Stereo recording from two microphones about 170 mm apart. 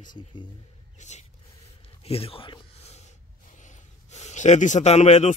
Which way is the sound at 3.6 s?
45° left (ahead or behind).